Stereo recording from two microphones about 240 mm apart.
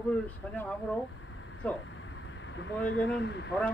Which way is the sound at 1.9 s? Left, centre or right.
Left.